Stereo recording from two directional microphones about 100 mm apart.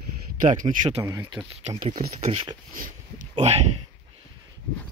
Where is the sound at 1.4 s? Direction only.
20° right (ahead or behind).